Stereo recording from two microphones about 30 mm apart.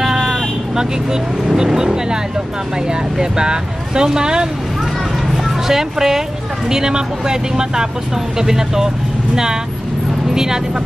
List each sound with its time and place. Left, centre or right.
0.0 s sheep: centre
1.7 s speech: centre
5.3 s music: centre
6.7 s speech: right